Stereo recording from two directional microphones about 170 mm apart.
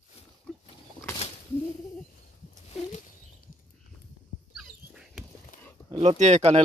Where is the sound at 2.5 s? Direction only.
40° left (ahead or behind).